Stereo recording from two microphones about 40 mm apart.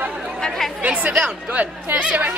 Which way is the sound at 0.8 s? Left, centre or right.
Right.